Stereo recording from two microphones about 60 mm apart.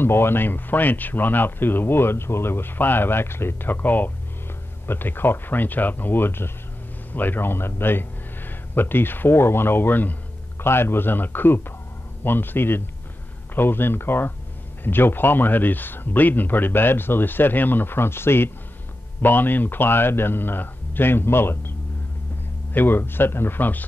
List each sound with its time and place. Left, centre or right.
0.0 s speech: left